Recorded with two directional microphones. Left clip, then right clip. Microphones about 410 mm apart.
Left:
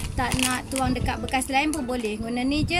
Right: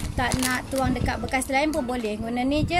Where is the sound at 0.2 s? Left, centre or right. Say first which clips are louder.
Even; centre.